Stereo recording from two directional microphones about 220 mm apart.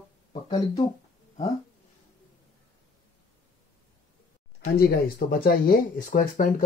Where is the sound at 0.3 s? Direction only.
25° left (ahead or behind).